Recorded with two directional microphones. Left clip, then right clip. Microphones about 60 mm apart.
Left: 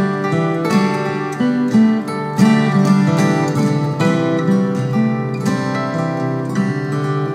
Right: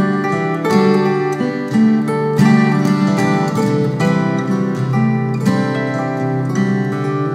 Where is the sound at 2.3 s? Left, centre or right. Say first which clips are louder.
Left 2 dB; left.